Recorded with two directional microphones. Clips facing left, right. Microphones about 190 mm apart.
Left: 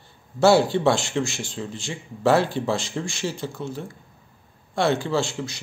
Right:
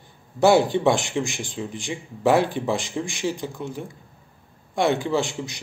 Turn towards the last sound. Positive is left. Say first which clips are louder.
# right 1 dB
turn(degrees=-15)  # may be behind; listen again after turning